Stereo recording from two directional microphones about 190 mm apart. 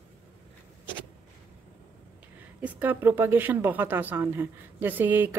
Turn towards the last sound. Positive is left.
turn(degrees=-10)  # may be behind; listen again after turning